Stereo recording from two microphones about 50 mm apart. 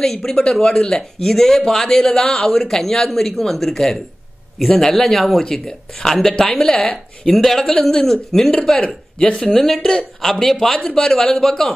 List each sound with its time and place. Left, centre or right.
0.0 s speech: centre
0.4 s speech: centre
5.4 s speech: centre
8.7 s speech: centre
11.0 s speech: centre